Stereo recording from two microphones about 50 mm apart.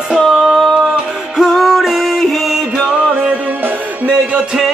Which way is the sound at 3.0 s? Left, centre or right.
Centre.